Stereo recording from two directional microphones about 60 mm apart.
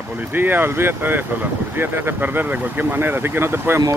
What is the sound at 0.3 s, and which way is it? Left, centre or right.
Speech, right.